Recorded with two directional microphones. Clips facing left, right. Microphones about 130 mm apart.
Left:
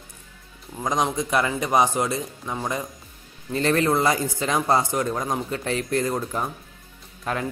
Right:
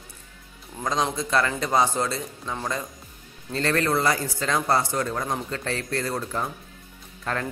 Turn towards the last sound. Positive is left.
turn(degrees=10)  # may be behind; listen again after turning